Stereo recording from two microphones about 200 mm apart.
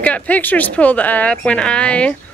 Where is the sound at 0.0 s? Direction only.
5° left (ahead or behind).